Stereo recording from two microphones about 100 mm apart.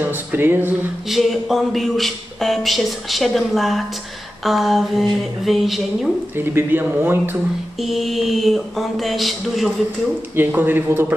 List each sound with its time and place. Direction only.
0.0 s speech: 20° right (ahead or behind)
1.0 s a man's voice: centre (ahead or behind)
6.3 s speech: 20° right (ahead or behind)
7.8 s a man's voice: centre (ahead or behind)
10.3 s speech: 20° right (ahead or behind)